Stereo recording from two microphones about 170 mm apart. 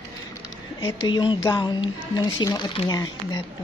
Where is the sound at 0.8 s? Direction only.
25° left (ahead or behind).